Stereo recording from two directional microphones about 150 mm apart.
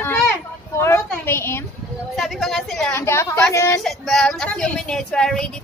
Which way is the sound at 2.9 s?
20° left (ahead or behind).